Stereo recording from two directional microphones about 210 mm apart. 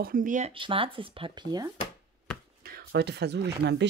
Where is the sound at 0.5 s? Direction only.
25° right (ahead or behind).